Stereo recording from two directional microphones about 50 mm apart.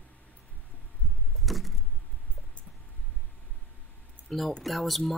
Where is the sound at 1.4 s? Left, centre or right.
Centre.